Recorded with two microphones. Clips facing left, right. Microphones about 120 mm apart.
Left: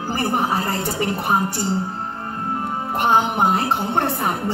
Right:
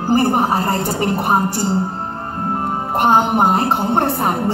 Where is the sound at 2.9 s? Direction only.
40° right (ahead or behind).